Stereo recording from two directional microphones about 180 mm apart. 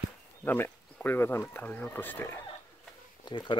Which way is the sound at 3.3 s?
25° left (ahead or behind).